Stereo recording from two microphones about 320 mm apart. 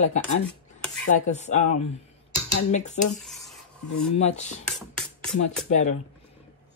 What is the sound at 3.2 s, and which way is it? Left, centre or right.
Rub, centre.